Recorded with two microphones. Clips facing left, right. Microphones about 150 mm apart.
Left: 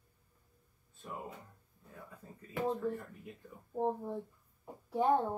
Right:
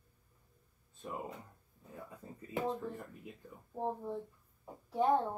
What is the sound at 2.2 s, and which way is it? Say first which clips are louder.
Speech: right 3 dB; 20° right (ahead or behind).